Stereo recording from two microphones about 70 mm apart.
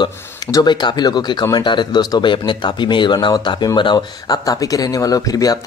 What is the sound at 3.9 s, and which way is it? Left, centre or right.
Speech, left.